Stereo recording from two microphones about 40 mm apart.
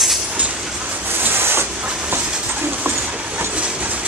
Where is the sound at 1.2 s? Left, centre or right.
Right.